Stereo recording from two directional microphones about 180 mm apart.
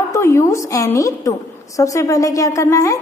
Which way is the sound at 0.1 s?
15° left (ahead or behind).